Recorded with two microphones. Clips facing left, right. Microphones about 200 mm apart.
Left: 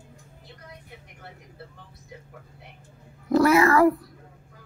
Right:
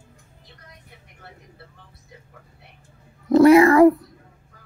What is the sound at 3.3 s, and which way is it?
Cat, 25° right (ahead or behind).